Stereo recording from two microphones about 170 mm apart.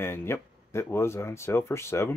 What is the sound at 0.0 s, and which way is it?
Speech, 15° left (ahead or behind).